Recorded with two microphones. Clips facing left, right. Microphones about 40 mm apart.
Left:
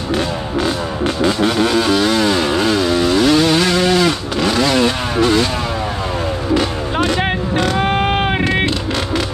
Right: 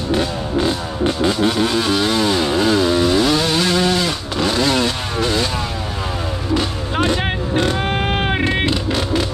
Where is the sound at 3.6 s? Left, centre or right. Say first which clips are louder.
Left 2 dB; left.